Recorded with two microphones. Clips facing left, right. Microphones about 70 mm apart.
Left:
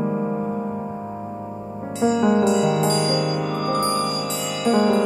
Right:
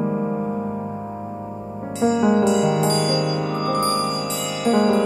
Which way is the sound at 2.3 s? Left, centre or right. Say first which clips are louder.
Even; centre.